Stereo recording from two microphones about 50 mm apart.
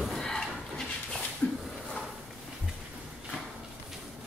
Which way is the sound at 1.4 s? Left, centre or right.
Left.